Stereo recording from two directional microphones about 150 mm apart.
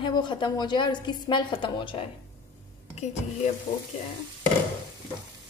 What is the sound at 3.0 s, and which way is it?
Speech, 50° left (ahead or behind).